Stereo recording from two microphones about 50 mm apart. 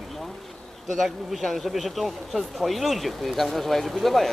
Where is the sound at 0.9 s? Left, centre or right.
Centre.